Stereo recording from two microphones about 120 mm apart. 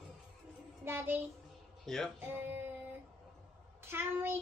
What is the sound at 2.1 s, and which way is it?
Music, 20° right (ahead or behind).